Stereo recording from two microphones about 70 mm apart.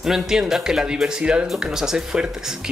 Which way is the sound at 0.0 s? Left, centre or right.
Centre.